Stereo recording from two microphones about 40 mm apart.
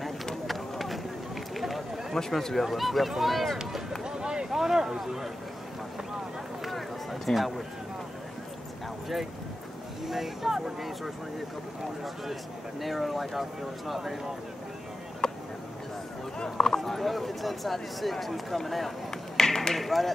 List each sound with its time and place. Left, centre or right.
0.5 s run: centre
1.5 s a sound: centre
2.1 s speech: centre
4.0 s boat: centre
4.5 s speech: centre
6.6 s run: centre
7.3 s speech: centre
10.0 s speech: centre
12.8 s speech: centre
15.2 s a sound: centre
16.4 s speech: centre
19.0 s a sound: centre